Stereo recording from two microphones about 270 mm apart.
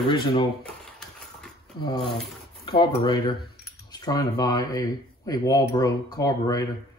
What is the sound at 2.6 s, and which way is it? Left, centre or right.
Speech, centre.